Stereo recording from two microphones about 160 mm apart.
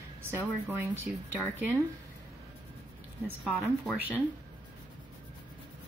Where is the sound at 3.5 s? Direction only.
5° left (ahead or behind).